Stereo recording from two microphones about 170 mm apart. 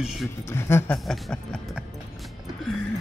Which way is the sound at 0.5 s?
15° left (ahead or behind).